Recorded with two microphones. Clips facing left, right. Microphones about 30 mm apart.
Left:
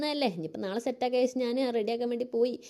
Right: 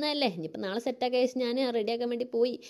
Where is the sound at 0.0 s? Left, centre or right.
Right.